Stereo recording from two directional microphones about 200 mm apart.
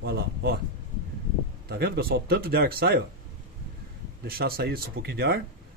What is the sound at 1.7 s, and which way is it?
Speech, 50° right (ahead or behind).